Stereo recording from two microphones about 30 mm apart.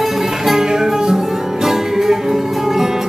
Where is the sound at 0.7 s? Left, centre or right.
Right.